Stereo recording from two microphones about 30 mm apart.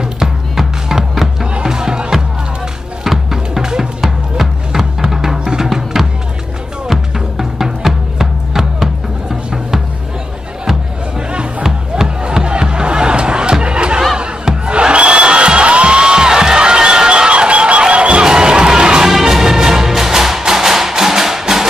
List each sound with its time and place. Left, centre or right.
0.8 s music: centre
1.6 s music: right
3.0 s music: centre
3.6 s drum: centre
4.4 s music: centre
12.4 s music: right
14.1 s crowd: right
14.7 s music: right
18.2 s music: right
19.0 s music: centre